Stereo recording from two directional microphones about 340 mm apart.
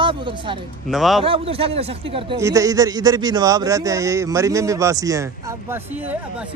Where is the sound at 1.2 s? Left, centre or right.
Centre.